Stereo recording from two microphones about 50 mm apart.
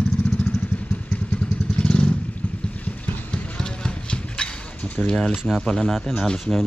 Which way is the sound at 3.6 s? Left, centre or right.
Centre.